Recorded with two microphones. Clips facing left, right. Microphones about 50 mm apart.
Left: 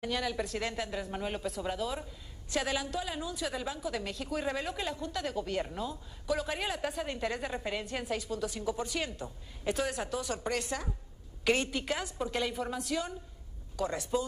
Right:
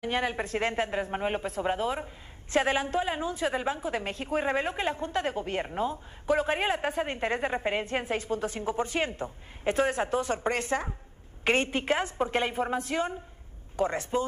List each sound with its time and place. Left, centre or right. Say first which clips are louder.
0.0 s a woman's voice: right 4 dB; right